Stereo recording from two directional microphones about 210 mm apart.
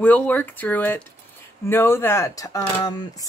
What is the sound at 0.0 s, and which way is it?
Speech, 10° left (ahead or behind).